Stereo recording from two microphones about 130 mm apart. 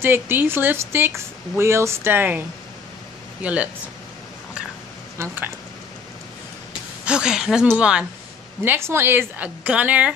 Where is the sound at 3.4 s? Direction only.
10° right (ahead or behind).